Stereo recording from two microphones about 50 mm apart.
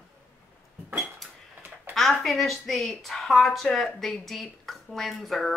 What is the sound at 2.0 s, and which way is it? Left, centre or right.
A woman's voice, centre.